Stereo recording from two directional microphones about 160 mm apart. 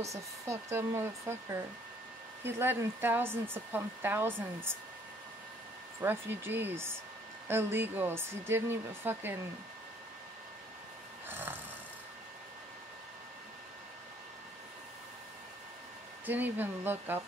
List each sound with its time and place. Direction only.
0.0 s speech: 20° right (ahead or behind)
5.9 s speech: 15° right (ahead or behind)
11.2 s speech: 15° right (ahead or behind)
16.3 s speech: 10° right (ahead or behind)